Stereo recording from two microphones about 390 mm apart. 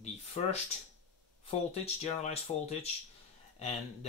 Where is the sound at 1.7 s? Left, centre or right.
Centre.